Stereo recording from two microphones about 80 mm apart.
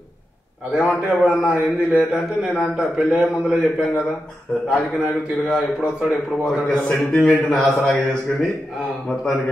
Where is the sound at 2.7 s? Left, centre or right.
Centre.